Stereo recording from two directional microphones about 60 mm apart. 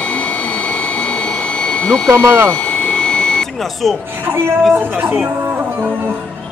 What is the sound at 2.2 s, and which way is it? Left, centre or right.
Speech, right.